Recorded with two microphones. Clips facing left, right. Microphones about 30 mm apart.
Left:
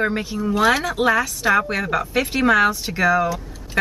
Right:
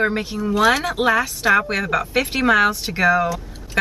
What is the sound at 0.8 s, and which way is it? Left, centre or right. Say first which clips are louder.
Speech: even; centre.